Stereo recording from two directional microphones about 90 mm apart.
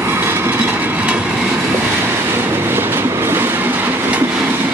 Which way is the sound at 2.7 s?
25° right (ahead or behind).